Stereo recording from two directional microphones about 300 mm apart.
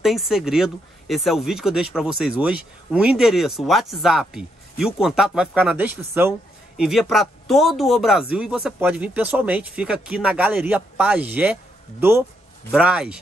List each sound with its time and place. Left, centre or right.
0.0 s speech: centre